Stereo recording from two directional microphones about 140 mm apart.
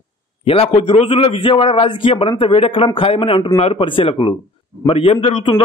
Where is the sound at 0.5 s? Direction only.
40° left (ahead or behind).